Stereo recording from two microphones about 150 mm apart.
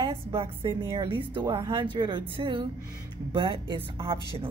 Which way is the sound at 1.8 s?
30° right (ahead or behind).